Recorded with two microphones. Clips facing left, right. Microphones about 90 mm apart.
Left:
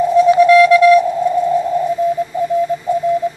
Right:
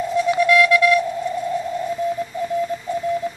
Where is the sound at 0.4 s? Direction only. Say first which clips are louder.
Left 6 dB; 30° left (ahead or behind).